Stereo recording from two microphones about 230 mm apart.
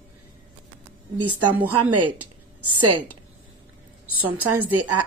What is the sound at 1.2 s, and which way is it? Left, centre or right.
A woman's voice, right.